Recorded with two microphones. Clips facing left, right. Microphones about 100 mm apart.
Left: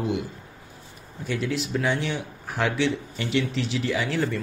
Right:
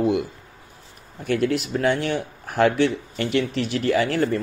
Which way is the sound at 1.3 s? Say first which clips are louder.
Right 5 dB; 55° right (ahead or behind).